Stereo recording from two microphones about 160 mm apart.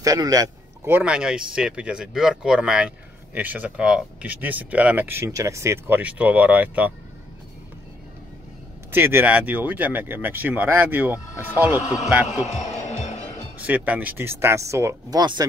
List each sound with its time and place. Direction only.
0.0 s speech: 20° right (ahead or behind)
8.9 s speech: 15° right (ahead or behind)
12.4 s music: 50° left (ahead or behind)
13.7 s speech: 10° right (ahead or behind); by 15.4 s 25° right (ahead or behind)